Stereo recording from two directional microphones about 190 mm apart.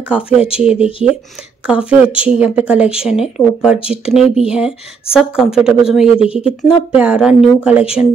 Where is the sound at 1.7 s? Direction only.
5° right (ahead or behind).